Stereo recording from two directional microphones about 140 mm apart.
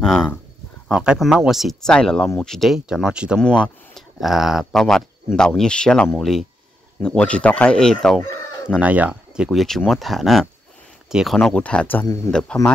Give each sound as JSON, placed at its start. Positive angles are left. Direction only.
{"t": 0.8, "sound": "speech", "side_deg": -5}
{"t": 3.3, "sound": "speech", "side_deg": 5}
{"t": 8.7, "sound": "speech", "side_deg": -10}
{"t": 11.4, "sound": "speech", "side_deg": 10}